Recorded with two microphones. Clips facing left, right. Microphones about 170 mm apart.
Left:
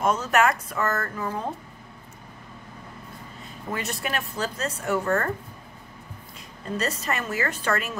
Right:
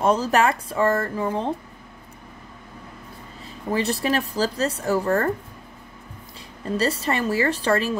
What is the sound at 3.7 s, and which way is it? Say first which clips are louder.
A woman's voice: right 7 dB; 35° right (ahead or behind).